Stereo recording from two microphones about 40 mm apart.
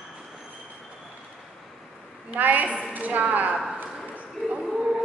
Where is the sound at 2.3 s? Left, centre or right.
Right.